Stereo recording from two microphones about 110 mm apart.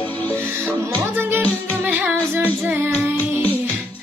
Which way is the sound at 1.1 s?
20° right (ahead or behind).